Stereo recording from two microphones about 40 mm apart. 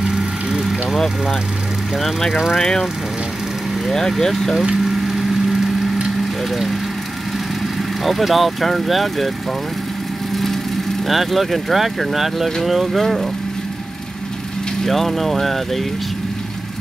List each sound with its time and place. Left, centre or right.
0.0 s vehicle: centre
2.0 s speech: centre
4.8 s vehicle: centre
6.5 s speech: centre
8.0 s speech: centre
10.3 s vehicle: centre
11.1 s speech: centre
13.0 s speech: centre
14.9 s speech: centre